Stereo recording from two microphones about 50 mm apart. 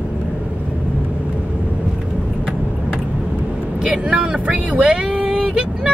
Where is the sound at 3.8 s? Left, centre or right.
Right.